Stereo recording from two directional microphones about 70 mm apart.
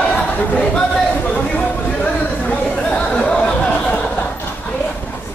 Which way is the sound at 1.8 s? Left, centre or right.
Centre.